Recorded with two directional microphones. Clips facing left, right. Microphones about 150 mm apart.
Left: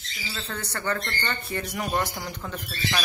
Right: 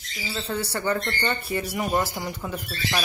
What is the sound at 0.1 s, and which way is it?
Speech, 10° right (ahead or behind).